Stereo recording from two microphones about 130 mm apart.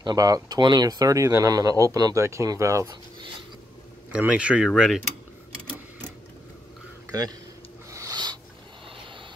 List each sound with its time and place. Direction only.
0.0 s speech: 30° right (ahead or behind)
4.1 s speech: 10° right (ahead or behind)
7.9 s a sound: 30° right (ahead or behind)